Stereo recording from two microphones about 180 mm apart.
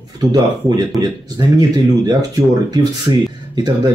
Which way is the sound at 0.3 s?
20° right (ahead or behind).